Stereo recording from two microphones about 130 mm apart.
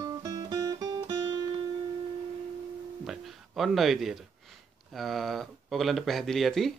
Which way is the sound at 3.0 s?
Centre (ahead or behind).